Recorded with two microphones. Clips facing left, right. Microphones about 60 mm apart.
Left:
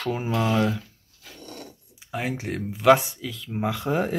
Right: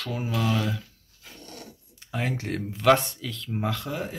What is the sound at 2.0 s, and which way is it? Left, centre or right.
Speech, centre.